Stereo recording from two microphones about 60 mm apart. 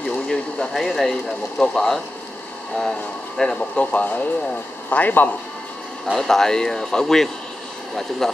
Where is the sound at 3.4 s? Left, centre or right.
Centre.